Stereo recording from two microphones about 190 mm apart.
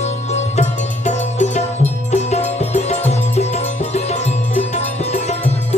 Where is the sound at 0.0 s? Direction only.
35° left (ahead or behind).